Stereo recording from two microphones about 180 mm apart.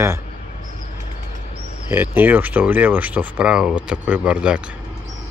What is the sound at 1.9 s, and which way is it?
Speech, 10° right (ahead or behind).